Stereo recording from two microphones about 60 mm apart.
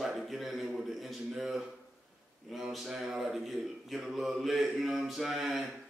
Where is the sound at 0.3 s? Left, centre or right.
Centre.